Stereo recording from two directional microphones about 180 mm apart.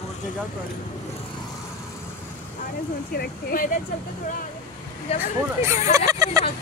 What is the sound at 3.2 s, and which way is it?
Speech, 55° left (ahead or behind).